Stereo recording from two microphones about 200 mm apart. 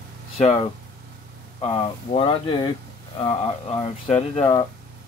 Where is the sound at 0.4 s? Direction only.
30° left (ahead or behind).